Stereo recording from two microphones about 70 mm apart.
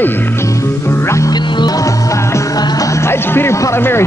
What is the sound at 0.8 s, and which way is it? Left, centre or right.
Music, left.